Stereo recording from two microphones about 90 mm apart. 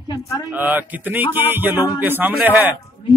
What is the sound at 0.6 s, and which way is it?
A man's voice, 20° right (ahead or behind).